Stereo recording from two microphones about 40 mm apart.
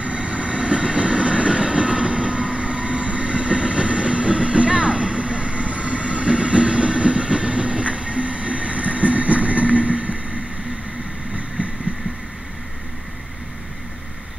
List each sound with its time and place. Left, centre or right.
0.0 s train: right
11.3 s vehicle: right